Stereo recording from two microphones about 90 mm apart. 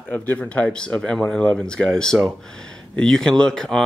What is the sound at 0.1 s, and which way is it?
Speech, 15° left (ahead or behind).